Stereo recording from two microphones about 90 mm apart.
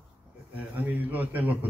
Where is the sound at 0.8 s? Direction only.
20° right (ahead or behind).